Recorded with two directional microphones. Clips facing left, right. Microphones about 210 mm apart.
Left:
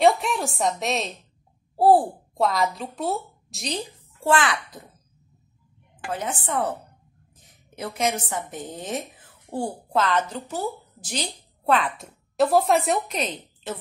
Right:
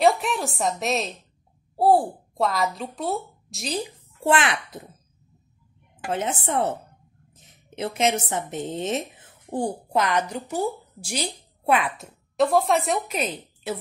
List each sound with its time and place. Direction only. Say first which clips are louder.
0.0 s a woman's voice: left 1 dB; centre (ahead or behind)
4.2 s a child's voice: even; 20° right (ahead or behind)
6.1 s a woman's voice: right 2 dB; 25° right (ahead or behind)
12.4 s a woman's voice: left 1 dB; centre (ahead or behind)